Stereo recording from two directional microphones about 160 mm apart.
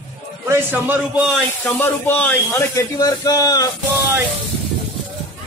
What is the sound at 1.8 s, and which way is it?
Speech, 10° left (ahead or behind).